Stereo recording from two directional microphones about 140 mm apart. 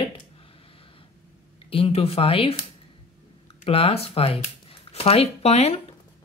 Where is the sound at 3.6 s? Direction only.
45° left (ahead or behind).